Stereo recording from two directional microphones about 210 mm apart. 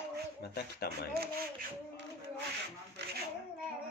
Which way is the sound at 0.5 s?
45° left (ahead or behind).